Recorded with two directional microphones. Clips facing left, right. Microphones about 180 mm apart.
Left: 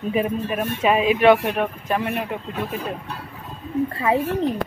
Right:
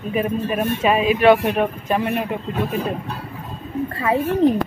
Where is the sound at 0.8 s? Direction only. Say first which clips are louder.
Even; 15° left (ahead or behind).